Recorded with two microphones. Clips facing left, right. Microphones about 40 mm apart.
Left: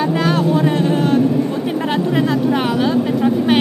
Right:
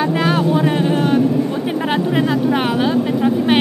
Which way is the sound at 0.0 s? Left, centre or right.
Centre.